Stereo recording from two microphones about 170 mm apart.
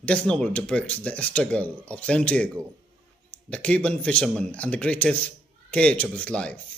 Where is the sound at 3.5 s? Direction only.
5° left (ahead or behind).